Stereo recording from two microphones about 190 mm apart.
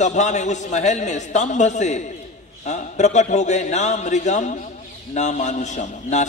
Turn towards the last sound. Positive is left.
turn(degrees=40)  # may be behind; listen again after turning